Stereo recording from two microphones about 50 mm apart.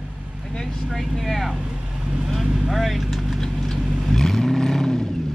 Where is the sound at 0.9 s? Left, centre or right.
Centre.